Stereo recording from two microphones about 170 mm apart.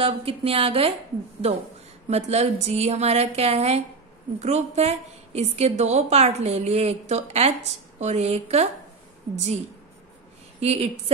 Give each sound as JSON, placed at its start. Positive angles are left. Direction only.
{"t": 0.0, "sound": "a woman's voice", "side_deg": -35}
{"t": 2.0, "sound": "a woman's voice", "side_deg": -40}
{"t": 10.6, "sound": "a woman's voice", "side_deg": -35}